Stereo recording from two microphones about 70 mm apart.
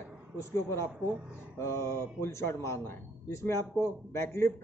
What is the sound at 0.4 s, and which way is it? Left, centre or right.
A man's voice, left.